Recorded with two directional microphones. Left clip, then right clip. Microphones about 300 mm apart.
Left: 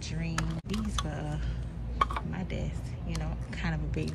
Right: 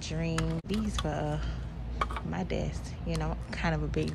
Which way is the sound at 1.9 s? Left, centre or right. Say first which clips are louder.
Left 4 dB; centre.